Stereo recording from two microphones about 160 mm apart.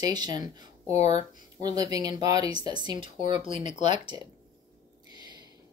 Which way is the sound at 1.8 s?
25° right (ahead or behind).